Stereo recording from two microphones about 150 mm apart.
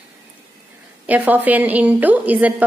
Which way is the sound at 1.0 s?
10° right (ahead or behind).